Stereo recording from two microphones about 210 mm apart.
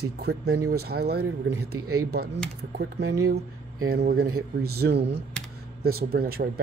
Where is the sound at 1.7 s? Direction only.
90° right.